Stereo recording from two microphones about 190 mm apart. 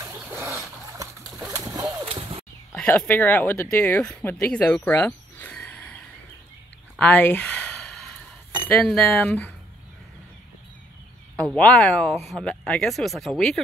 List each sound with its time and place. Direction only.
0.0 s splash: 15° right (ahead or behind)
2.7 s speech: 5° left (ahead or behind)
7.0 s a sound: 10° left (ahead or behind)
8.6 s speech: 5° left (ahead or behind)
11.5 s speech: 5° left (ahead or behind)